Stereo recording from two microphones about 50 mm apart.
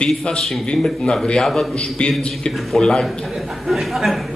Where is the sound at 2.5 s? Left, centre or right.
Centre.